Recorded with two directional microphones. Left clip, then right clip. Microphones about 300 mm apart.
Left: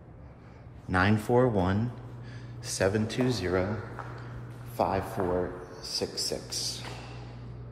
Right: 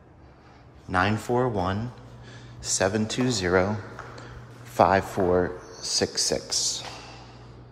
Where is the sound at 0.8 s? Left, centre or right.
Centre.